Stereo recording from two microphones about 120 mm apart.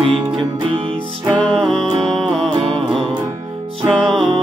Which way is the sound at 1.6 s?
Centre (ahead or behind).